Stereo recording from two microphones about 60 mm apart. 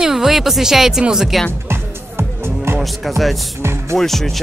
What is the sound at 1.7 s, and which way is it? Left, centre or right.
Music, right.